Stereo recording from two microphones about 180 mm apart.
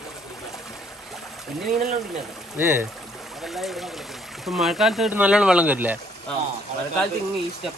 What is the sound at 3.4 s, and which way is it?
Speech, centre (ahead or behind).